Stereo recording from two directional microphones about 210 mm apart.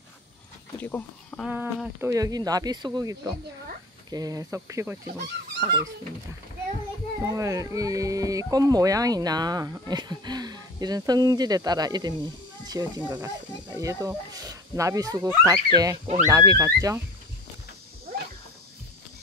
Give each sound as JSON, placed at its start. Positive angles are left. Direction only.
{"t": 0.7, "sound": "speech", "side_deg": 10}
{"t": 1.5, "sound": "speech", "side_deg": -10}
{"t": 7.2, "sound": "speech", "side_deg": -15}